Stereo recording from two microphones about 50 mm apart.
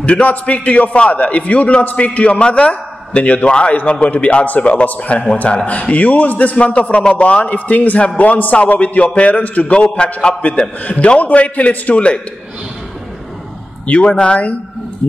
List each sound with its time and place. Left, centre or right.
0.0 s a man's voice: left
13.8 s a man's voice: left